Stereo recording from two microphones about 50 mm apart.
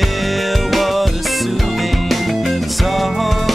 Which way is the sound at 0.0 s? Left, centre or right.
Centre.